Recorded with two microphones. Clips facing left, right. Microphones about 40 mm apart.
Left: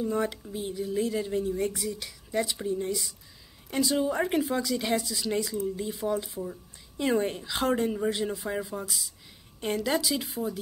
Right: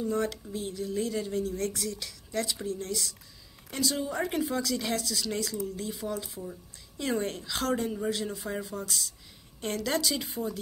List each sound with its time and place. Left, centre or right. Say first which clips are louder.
0.0 s a woman's voice: left 1 dB; centre